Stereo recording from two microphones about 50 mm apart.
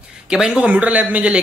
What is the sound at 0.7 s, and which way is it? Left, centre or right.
Speech, right.